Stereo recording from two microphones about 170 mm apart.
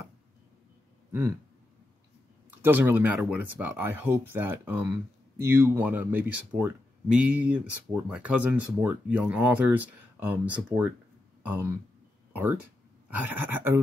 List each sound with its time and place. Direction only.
2.6 s speech: 10° right (ahead or behind)